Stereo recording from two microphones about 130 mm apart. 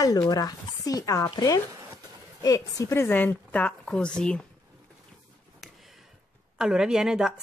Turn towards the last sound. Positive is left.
turn(degrees=-5)  # may be behind; listen again after turning